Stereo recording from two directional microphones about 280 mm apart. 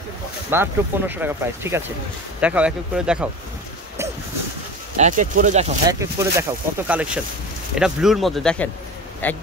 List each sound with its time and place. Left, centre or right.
0.5 s speech: centre
4.9 s speech: right
5.9 s speech: centre